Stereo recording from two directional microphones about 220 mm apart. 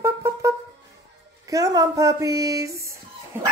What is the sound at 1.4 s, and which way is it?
Speech, 15° right (ahead or behind).